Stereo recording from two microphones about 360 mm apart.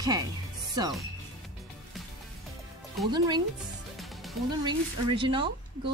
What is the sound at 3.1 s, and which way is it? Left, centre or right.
Speech, centre.